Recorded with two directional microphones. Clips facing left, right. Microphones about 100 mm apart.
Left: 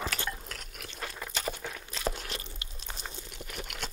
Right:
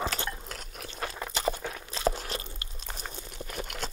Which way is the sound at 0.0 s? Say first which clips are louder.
Right 3 dB; 25° right (ahead or behind).